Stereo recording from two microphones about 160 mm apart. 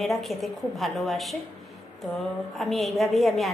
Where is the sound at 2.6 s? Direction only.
Centre (ahead or behind).